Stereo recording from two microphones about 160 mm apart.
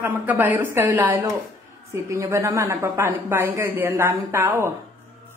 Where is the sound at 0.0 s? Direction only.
10° right (ahead or behind).